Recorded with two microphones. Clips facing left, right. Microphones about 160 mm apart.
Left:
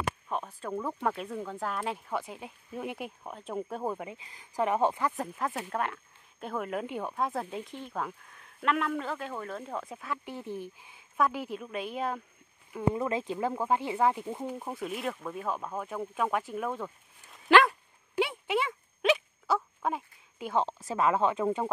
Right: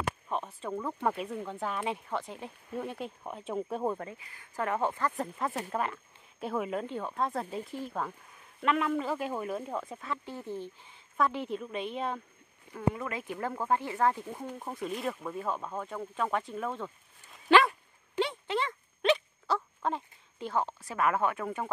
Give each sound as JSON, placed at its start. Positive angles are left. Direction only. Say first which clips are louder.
{"t": 0.3, "sound": "speech", "louder": "even", "side_deg": 0}
{"t": 3.3, "sound": "speech", "louder": "right 2 dB", "side_deg": 0}
{"t": 4.1, "sound": "speech", "louder": "left 1 dB", "side_deg": 20}
{"t": 5.1, "sound": "speech", "louder": "even", "side_deg": 0}
{"t": 10.2, "sound": "speech", "louder": "even", "side_deg": 20}
{"t": 12.9, "sound": "speech", "louder": "left 6 dB", "side_deg": 25}
{"t": 17.5, "sound": "dog", "louder": "left 1 dB", "side_deg": 0}
{"t": 20.5, "sound": "speech", "louder": "left 3 dB", "side_deg": 25}